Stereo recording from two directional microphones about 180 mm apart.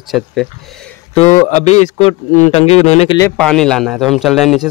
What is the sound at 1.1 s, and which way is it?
Speech, 40° left (ahead or behind).